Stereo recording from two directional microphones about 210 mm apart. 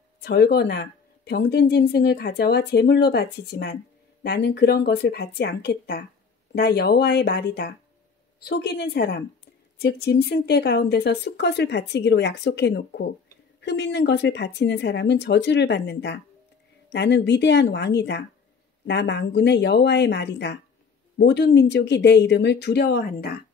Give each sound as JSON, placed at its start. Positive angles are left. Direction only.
{"t": 0.2, "sound": "a woman's voice", "side_deg": 50}